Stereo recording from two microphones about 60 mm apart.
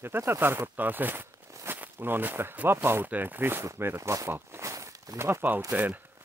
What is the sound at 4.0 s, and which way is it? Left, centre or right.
Speech, right.